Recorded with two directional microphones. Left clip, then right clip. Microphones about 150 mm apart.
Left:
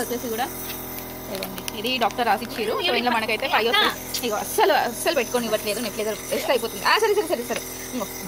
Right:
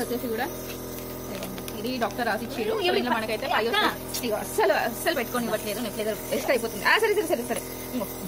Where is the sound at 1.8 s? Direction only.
20° left (ahead or behind).